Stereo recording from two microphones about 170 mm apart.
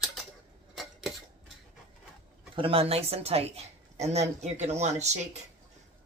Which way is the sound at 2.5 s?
30° right (ahead or behind).